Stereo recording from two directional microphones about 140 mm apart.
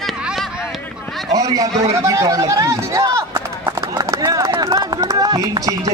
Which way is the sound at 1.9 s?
20° right (ahead or behind).